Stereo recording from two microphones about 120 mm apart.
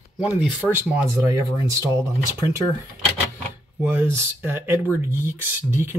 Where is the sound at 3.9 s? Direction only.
15° right (ahead or behind).